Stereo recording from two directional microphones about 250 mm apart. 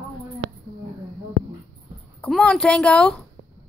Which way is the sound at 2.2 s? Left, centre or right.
Centre.